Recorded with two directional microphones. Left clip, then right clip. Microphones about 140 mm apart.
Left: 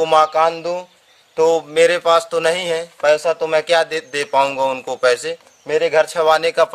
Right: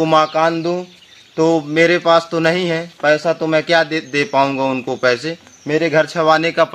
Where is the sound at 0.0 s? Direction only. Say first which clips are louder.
Even; 40° left (ahead or behind).